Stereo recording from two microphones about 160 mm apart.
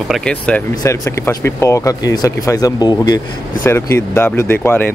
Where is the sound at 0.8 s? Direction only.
15° left (ahead or behind).